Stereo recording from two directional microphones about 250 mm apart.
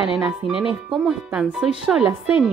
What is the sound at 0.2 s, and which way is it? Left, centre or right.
Speech, centre.